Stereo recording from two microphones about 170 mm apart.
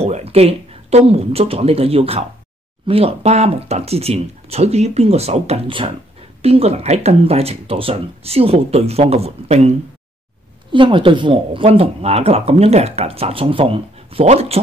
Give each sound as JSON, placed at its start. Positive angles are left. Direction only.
{"t": 0.0, "sound": "speech", "side_deg": -35}
{"t": 10.7, "sound": "speech", "side_deg": -30}